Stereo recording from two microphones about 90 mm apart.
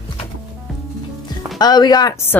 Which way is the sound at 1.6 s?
50° left (ahead or behind).